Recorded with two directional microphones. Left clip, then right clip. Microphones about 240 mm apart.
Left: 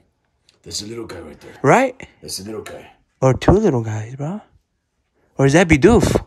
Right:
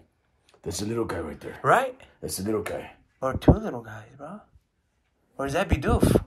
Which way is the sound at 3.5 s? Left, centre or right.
Left.